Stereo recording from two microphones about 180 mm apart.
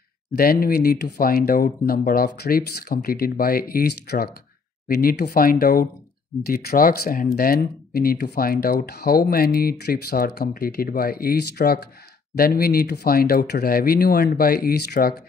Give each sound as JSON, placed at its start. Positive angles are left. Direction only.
{"t": 0.4, "sound": "speech", "side_deg": 55}